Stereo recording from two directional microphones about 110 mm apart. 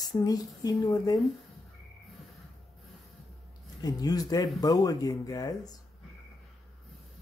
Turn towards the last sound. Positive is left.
turn(degrees=35)  # may be behind; listen again after turning